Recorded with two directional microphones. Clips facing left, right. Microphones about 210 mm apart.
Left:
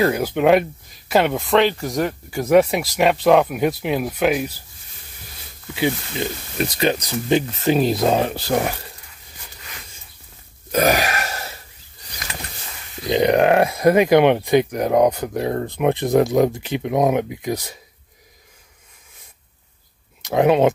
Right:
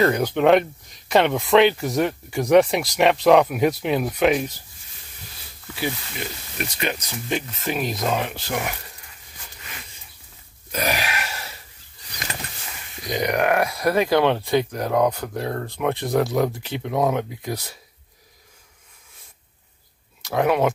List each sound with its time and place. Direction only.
0.0 s speech: 5° left (ahead or behind)
5.8 s speech: 20° left (ahead or behind)
6.6 s speech: 35° left (ahead or behind)
10.7 s wheeze: 45° left (ahead or behind)
13.0 s speech: 25° left (ahead or behind)
20.2 s speech: 20° left (ahead or behind)